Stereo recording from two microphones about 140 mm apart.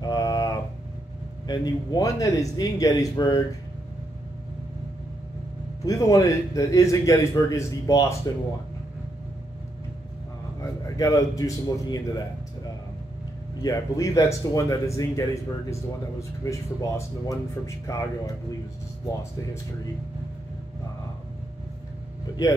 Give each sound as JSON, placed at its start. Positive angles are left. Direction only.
{"t": 0.0, "sound": "a sound", "side_deg": 25}
{"t": 1.5, "sound": "speech", "side_deg": 30}
{"t": 5.9, "sound": "speech", "side_deg": 25}
{"t": 10.6, "sound": "a man's voice", "side_deg": 25}
{"t": 13.6, "sound": "speech", "side_deg": 25}